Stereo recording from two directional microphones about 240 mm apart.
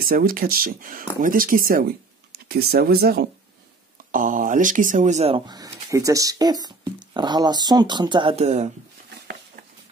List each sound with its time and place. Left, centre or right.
0.0 s speech: right